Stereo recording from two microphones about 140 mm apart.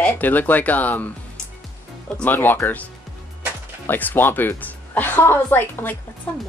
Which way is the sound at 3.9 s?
15° left (ahead or behind).